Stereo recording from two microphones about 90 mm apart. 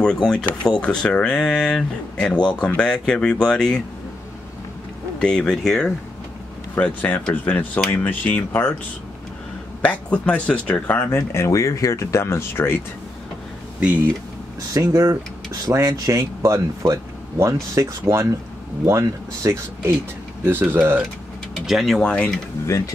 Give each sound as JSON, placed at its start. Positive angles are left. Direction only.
{"t": 0.0, "sound": "speech", "side_deg": 10}
{"t": 5.2, "sound": "speech", "side_deg": 10}
{"t": 6.7, "sound": "speech", "side_deg": 15}
{"t": 9.8, "sound": "speech", "side_deg": 15}
{"t": 11.1, "sound": "speech", "side_deg": 30}
{"t": 14.7, "sound": "speech", "side_deg": -35}
{"t": 15.7, "sound": "speech", "side_deg": -30}
{"t": 20.4, "sound": "speech", "side_deg": -25}
{"t": 21.6, "sound": "speech", "side_deg": 0}